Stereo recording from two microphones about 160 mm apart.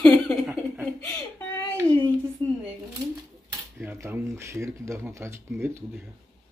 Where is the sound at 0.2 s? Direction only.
Centre (ahead or behind).